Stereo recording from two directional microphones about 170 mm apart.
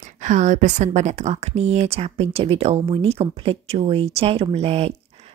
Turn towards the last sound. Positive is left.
turn(degrees=-35)  # may be behind; listen again after turning